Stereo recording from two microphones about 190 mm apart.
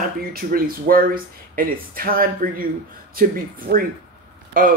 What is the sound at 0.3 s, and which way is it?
Speech, 50° right (ahead or behind).